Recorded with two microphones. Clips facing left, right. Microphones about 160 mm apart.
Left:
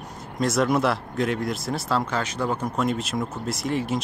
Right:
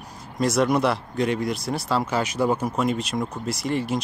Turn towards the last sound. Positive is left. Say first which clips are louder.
# right 1 dB
turn(degrees=0)  # may be behind; listen again after turning